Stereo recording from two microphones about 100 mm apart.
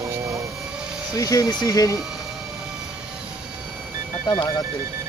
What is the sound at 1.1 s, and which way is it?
Speech, 35° left (ahead or behind).